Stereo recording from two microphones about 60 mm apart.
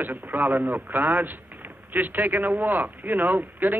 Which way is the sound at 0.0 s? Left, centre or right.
Right.